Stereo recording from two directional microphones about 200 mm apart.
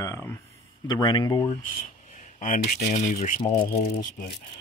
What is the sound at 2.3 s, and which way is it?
Speech, 40° left (ahead or behind).